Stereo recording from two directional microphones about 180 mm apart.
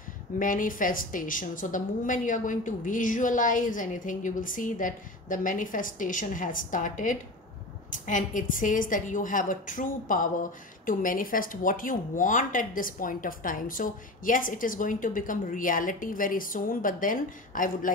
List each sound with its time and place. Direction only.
0.4 s a woman's voice: 50° left (ahead or behind)